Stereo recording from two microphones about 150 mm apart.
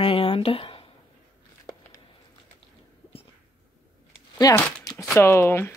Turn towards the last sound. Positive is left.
turn(degrees=15)  # may be behind; listen again after turning